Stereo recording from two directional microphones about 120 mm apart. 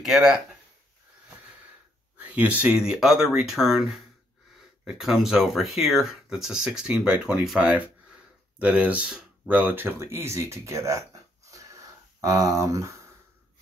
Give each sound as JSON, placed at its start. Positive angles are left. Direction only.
{"t": 0.0, "sound": "speech", "side_deg": -5}
{"t": 2.1, "sound": "speech", "side_deg": -15}
{"t": 11.5, "sound": "a sound", "side_deg": -25}